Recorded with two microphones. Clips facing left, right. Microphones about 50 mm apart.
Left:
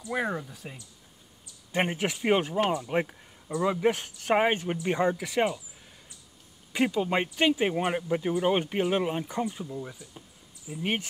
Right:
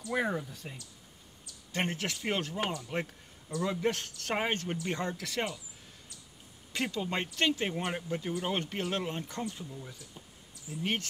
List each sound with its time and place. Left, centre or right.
0.1 s speech: centre
6.7 s speech: centre